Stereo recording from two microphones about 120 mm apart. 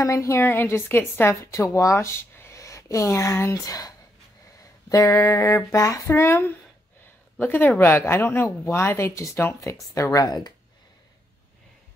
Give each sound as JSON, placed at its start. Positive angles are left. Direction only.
{"t": 0.0, "sound": "a woman's voice", "side_deg": 25}